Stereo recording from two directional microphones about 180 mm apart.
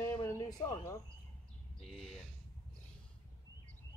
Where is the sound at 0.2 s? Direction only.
15° left (ahead or behind).